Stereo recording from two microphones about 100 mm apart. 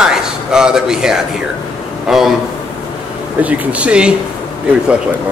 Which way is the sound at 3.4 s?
15° right (ahead or behind).